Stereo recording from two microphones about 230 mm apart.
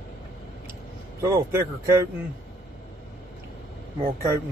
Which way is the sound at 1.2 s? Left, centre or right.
Centre.